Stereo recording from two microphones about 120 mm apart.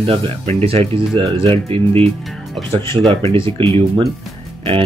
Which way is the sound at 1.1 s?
45° right (ahead or behind).